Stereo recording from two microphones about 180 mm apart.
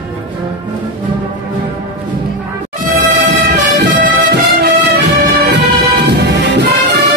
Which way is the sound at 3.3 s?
70° right (ahead or behind).